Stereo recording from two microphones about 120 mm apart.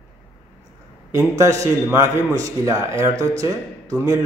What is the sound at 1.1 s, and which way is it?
A man's voice, 25° right (ahead or behind).